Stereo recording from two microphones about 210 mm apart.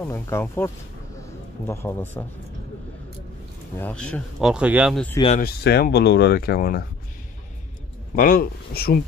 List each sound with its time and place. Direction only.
0.0 s speech: 10° left (ahead or behind)
1.7 s speech: 10° left (ahead or behind)
3.7 s speech: 5° left (ahead or behind)
5.4 s speech: 50° left (ahead or behind)
8.2 s speech: 45° left (ahead or behind)